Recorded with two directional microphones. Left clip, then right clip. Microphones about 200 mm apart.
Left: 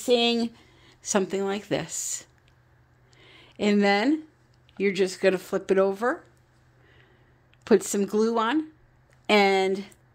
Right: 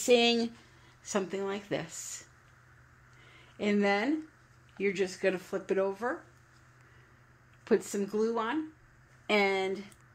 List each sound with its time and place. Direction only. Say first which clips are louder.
0.0 s speech: left 2 dB; 35° left (ahead or behind)
0.8 s speech: left 8 dB; 65° left (ahead or behind)
3.2 s a sound: left 7 dB; 70° left (ahead or behind)
4.7 s speech: left 6 dB; 70° left (ahead or behind)
7.6 s speech: left 7 dB; 70° left (ahead or behind)